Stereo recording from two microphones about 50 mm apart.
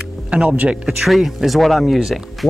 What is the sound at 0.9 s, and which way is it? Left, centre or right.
Speech, centre.